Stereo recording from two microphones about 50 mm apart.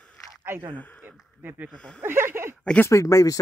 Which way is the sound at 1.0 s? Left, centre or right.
Right.